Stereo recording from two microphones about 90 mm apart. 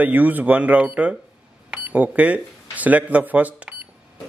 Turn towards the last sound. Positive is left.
turn(degrees=-15)  # may be behind; listen again after turning